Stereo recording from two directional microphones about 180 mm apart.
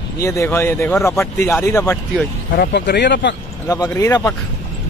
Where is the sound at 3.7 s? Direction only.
15° left (ahead or behind).